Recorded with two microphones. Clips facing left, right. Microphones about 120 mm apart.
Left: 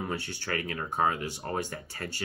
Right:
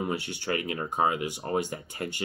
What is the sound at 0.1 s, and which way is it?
Speech, 20° right (ahead or behind).